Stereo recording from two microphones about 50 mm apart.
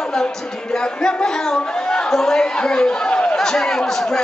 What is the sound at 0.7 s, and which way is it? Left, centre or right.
A man's voice, centre.